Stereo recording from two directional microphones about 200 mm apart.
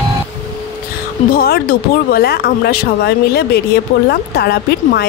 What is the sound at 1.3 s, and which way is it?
Speech, 50° left (ahead or behind).